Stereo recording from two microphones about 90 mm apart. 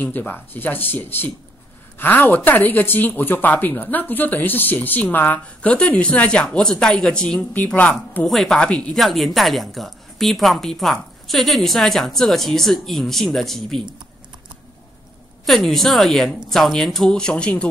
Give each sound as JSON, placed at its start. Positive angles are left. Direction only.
{"t": 0.0, "sound": "a woman's voice", "side_deg": 20}
{"t": 8.2, "sound": "a woman's voice", "side_deg": 5}
{"t": 8.9, "sound": "a woman's voice", "side_deg": 0}
{"t": 15.4, "sound": "a woman's voice", "side_deg": 0}